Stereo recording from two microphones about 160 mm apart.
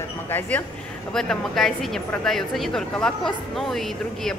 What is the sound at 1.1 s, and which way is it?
A woman's voice, 5° left (ahead or behind).